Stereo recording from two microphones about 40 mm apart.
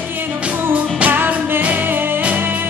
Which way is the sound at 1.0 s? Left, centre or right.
Right.